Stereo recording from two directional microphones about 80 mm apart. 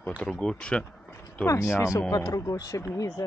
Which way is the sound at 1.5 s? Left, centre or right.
Left.